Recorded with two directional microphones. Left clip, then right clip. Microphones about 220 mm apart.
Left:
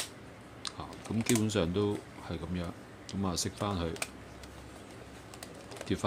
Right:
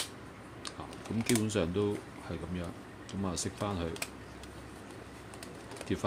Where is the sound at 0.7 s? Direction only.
5° left (ahead or behind).